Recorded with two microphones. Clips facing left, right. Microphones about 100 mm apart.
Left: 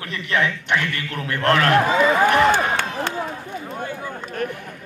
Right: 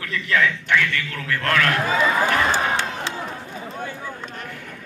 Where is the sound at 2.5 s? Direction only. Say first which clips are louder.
Left 2 dB; 50° left (ahead or behind).